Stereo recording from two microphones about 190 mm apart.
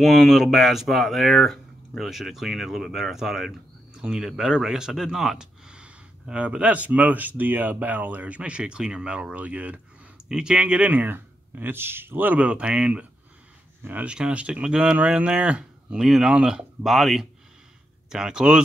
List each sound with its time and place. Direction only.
0.0 s speech: centre (ahead or behind)